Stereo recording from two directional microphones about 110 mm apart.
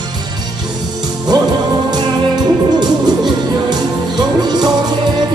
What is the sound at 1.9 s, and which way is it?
Music, 40° right (ahead or behind).